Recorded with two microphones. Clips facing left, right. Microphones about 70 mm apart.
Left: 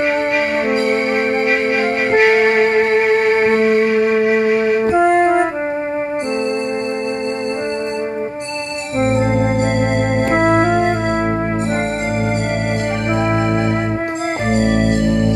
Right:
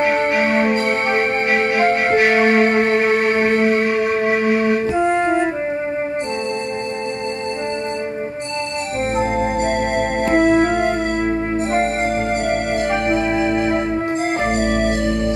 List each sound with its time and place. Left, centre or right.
0.0 s music: right
4.7 s music: left
9.0 s organ: left
10.1 s music: left
14.8 s music: right